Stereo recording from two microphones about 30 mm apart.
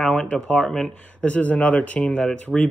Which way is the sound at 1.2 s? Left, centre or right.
Left.